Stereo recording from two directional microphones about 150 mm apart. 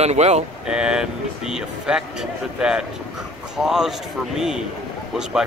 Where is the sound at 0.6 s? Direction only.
5° right (ahead or behind).